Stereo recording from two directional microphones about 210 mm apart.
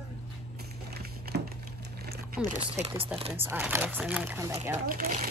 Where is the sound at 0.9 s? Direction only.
50° right (ahead or behind).